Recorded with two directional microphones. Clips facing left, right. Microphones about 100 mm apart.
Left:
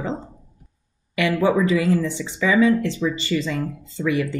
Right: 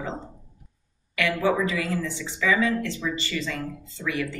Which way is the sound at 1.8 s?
20° left (ahead or behind).